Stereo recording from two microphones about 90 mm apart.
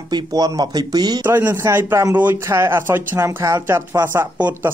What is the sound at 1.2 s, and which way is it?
A man's voice, 25° right (ahead or behind).